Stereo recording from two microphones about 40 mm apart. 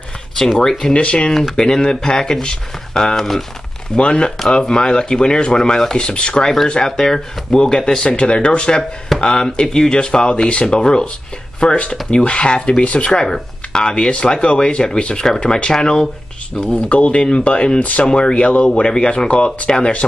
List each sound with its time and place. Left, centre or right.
0.9 s speech: left
13.2 s speech: centre
16.7 s speech: left